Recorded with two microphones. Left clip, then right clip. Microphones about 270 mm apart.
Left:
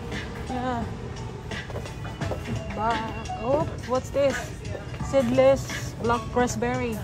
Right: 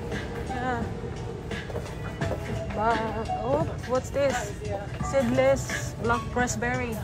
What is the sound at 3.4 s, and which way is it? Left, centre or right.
Speech, centre.